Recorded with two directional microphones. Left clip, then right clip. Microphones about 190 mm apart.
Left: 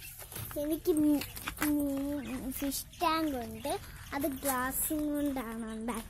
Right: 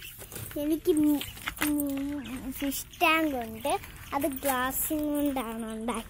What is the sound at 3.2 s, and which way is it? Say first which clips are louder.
Speech: right 5 dB; 25° right (ahead or behind).